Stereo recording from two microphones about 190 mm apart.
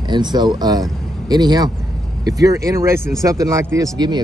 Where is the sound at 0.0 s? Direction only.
25° right (ahead or behind).